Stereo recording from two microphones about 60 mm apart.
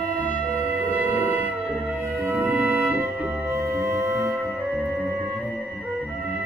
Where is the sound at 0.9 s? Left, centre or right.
Right.